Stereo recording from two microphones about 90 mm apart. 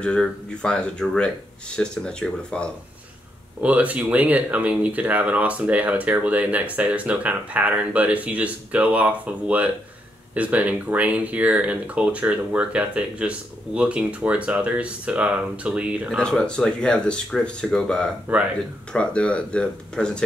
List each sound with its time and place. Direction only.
0.0 s speech: 10° left (ahead or behind)
3.6 s speech: 15° right (ahead or behind)
16.2 s speech: 10° left (ahead or behind)